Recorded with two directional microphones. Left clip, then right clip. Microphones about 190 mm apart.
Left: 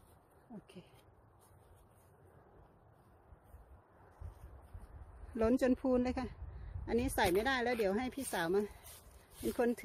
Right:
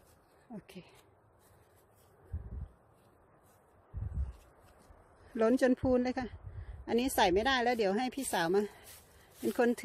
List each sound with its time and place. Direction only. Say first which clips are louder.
5.3 s a woman's voice: right 4 dB; 15° right (ahead or behind)